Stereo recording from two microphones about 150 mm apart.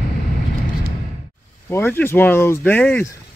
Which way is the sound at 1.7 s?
15° left (ahead or behind).